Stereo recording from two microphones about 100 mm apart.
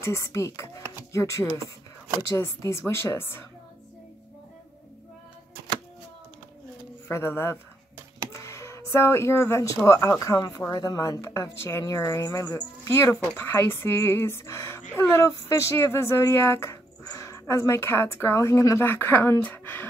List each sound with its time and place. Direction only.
0.0 s a woman's voice: 30° left (ahead or behind)
7.1 s a woman's voice: 25° left (ahead or behind)
8.4 s a sound: 30° left (ahead or behind)
9.8 s a woman's voice: 30° left (ahead or behind)